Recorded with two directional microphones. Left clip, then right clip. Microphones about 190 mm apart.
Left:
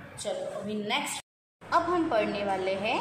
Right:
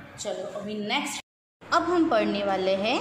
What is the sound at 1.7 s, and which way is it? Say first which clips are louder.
A woman's voice: right 3 dB; 30° right (ahead or behind).